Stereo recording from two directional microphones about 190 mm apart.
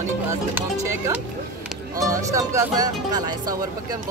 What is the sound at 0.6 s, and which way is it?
Speech, 15° right (ahead or behind).